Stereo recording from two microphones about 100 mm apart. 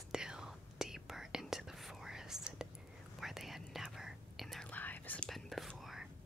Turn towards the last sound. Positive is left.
turn(degrees=0)  # may be behind; listen again after turning